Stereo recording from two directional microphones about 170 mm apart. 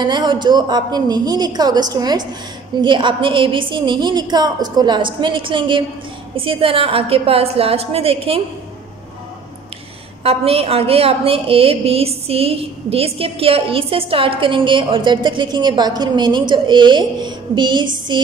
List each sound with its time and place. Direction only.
0.0 s a woman's voice: 25° right (ahead or behind)
10.2 s a woman's voice: 35° right (ahead or behind)